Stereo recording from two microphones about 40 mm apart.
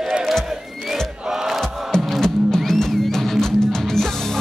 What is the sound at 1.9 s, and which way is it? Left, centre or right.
Music, centre.